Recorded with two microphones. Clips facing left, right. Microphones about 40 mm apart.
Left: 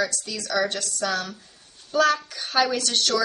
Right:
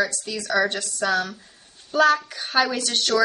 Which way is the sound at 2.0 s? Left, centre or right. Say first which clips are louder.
Right 3 dB; right.